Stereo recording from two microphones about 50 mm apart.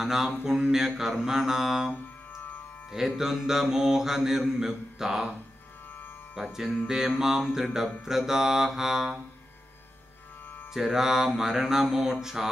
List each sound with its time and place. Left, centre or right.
0.0 s mantra: centre
3.2 s mantra: centre
6.3 s mantra: centre
10.7 s mantra: centre